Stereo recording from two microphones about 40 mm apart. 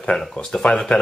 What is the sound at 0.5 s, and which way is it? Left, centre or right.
Speech, centre.